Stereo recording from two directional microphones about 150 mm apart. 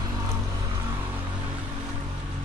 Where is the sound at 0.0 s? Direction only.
20° right (ahead or behind).